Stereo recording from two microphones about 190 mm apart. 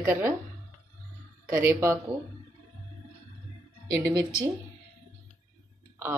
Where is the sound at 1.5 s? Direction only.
15° right (ahead or behind).